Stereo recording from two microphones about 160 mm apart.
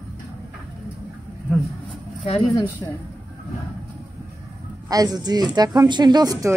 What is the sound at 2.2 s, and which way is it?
Speech, 35° left (ahead or behind).